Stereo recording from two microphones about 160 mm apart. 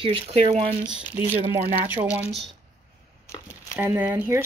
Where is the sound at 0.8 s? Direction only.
5° right (ahead or behind).